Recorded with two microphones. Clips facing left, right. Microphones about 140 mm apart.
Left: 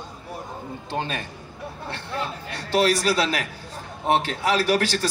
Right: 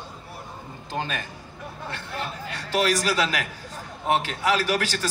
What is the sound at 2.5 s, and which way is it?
Speech, 35° left (ahead or behind).